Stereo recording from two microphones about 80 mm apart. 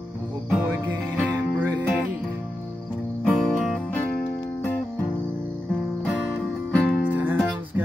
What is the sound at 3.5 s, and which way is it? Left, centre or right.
Music, centre.